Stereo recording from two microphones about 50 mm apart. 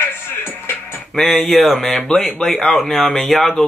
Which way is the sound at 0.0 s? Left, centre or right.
Left.